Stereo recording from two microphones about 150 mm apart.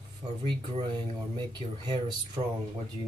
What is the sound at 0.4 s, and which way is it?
Speech, 35° right (ahead or behind).